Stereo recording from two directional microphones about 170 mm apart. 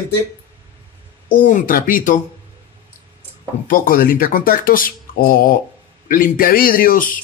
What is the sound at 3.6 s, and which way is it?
Speech, 55° left (ahead or behind).